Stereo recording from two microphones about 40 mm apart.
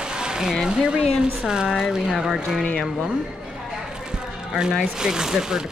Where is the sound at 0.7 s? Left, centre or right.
Right.